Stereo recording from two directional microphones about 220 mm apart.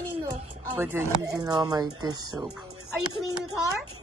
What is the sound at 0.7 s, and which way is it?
Speech, 15° right (ahead or behind).